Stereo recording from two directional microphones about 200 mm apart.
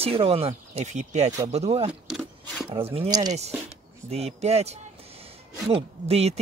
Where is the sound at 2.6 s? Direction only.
30° right (ahead or behind).